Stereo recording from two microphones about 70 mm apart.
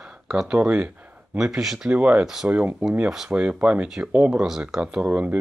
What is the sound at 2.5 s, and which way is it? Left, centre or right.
Speech, right.